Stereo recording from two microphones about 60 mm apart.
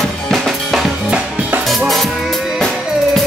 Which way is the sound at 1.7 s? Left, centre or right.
Centre.